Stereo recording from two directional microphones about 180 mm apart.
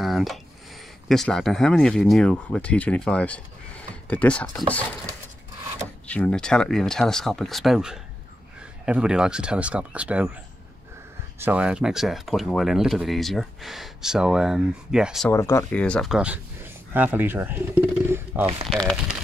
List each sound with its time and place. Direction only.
0.0 s a sound: centre (ahead or behind)
1.0 s speech: centre (ahead or behind)
11.3 s speech: 10° right (ahead or behind)
15.2 s speech: 15° left (ahead or behind)
15.8 s speech: 5° left (ahead or behind)
18.7 s speech: 5° left (ahead or behind)